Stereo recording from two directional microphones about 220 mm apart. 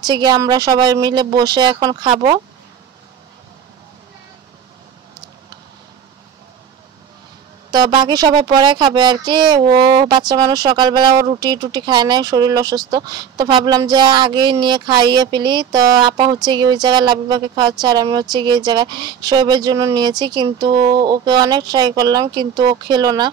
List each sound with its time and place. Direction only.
0.0 s speech: 20° right (ahead or behind)
7.7 s speech: 20° right (ahead or behind)